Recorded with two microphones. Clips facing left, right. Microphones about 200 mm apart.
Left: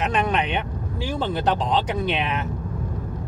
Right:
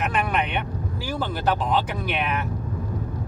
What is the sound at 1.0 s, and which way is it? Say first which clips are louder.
Speech: left 2 dB; 25° left (ahead or behind).